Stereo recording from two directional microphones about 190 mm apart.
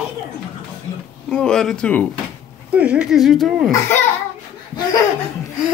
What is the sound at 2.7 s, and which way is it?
Speech, 5° right (ahead or behind).